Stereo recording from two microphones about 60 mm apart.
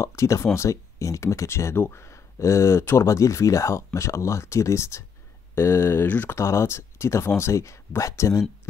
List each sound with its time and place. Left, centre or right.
0.0 s speech: left
3.1 s speech: left
6.3 s speech: left